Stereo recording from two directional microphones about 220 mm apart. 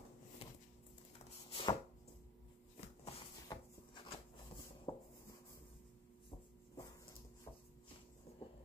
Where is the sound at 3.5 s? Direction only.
15° left (ahead or behind).